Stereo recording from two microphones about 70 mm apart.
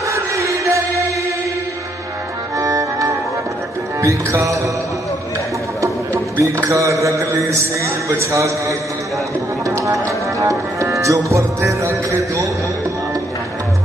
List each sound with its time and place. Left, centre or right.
0.1 s music: right
2.5 s music: right
4.0 s mantra: right
5.8 s music: right
6.7 s mantra: right
10.0 s music: right